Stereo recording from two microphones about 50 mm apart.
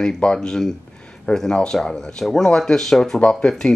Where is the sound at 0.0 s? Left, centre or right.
Centre.